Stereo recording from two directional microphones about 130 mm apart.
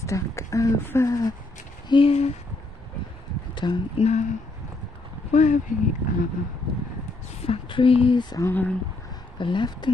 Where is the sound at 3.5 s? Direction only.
35° left (ahead or behind).